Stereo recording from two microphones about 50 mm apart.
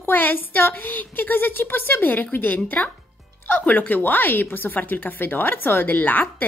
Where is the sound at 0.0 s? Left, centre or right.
Left.